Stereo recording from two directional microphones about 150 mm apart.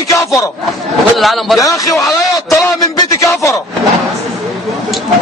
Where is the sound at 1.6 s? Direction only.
20° left (ahead or behind).